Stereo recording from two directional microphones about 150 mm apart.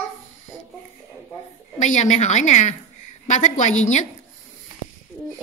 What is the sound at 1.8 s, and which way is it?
A woman's voice, 55° left (ahead or behind).